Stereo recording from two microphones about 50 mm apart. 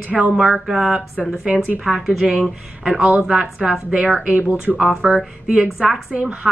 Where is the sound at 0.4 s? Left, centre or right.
Centre.